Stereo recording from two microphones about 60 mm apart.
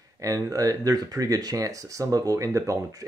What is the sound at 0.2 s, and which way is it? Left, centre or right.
Speech, right.